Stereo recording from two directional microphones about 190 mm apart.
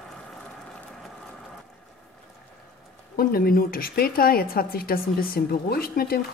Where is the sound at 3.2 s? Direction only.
50° left (ahead or behind).